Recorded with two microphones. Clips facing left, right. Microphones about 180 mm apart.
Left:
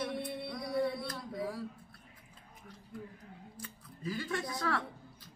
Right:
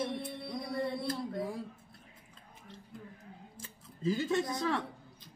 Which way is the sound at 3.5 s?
25° right (ahead or behind).